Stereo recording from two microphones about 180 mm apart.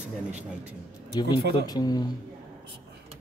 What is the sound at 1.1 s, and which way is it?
Speech, 20° left (ahead or behind).